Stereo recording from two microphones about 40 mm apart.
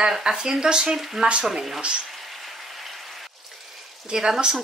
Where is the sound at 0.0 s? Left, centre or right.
Centre.